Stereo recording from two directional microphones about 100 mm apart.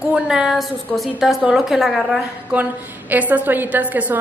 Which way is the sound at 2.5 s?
15° right (ahead or behind).